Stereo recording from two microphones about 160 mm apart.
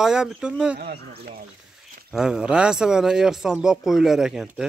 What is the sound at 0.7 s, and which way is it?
Speech, 70° right (ahead or behind).